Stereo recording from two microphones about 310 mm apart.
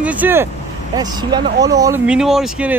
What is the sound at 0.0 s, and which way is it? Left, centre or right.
Speech, centre.